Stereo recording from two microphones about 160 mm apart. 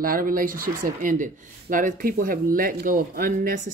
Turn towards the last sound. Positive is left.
turn(degrees=-60)  # may be behind; listen again after turning